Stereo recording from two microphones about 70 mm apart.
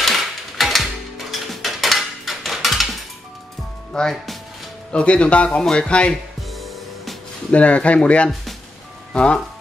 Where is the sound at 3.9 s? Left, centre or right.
Centre.